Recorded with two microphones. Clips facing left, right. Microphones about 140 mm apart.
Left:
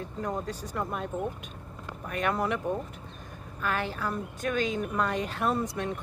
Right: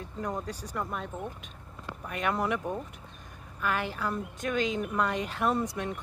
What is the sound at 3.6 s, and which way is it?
Speech, 15° right (ahead or behind).